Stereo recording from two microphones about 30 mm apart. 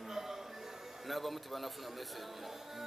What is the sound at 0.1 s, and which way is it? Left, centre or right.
Music, centre.